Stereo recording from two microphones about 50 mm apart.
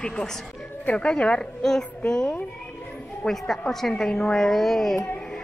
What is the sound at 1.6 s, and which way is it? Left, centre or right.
Child singing, centre.